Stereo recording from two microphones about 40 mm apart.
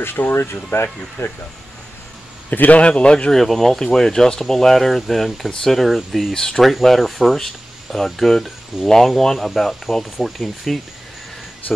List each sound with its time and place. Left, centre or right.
0.0 s speech: left
1.2 s speech: left
2.5 s a man's voice: left
2.8 s speech: left
3.3 s speech: centre
6.3 s speech: centre
6.6 s speech: centre